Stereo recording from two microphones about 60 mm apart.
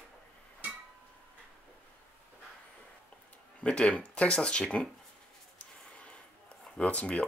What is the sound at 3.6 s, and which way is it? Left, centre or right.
Speech, centre.